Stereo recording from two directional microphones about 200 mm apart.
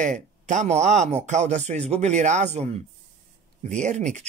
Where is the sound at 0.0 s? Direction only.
35° right (ahead or behind).